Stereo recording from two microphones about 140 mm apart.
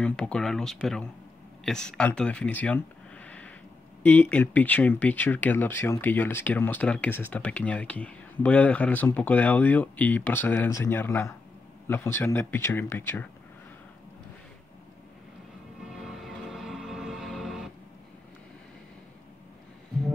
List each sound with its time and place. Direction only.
0.0 s speech: 5° left (ahead or behind)
15.9 s music: centre (ahead or behind)